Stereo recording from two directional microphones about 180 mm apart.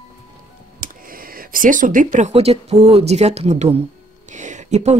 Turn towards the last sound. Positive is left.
turn(degrees=-40)  # may be behind; listen again after turning